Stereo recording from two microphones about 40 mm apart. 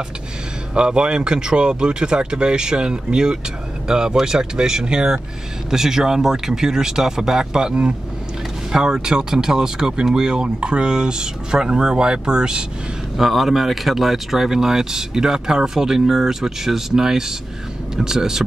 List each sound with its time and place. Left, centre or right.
0.7 s speech: right
13.2 s speech: centre